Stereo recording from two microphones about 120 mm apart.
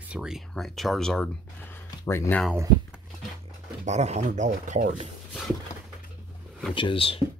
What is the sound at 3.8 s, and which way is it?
Speech, 75° right (ahead or behind).